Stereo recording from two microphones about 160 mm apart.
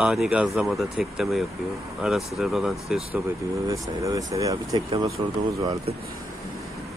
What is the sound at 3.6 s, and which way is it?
Speech, 20° right (ahead or behind).